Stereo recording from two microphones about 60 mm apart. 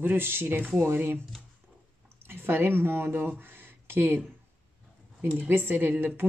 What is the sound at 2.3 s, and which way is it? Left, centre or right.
Speech, right.